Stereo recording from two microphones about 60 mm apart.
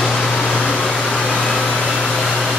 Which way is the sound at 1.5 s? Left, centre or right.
Centre.